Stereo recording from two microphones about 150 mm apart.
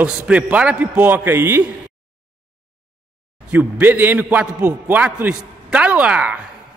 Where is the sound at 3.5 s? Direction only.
10° right (ahead or behind).